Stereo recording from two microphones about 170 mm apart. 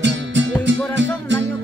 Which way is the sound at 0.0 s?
90° right.